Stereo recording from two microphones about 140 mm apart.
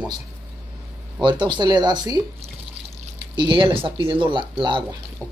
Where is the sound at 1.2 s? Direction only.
35° right (ahead or behind).